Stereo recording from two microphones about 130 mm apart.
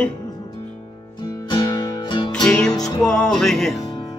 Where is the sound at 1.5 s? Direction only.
30° left (ahead or behind).